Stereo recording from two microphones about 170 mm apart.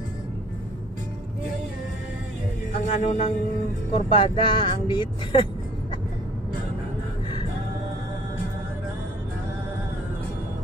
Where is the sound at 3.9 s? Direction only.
30° left (ahead or behind).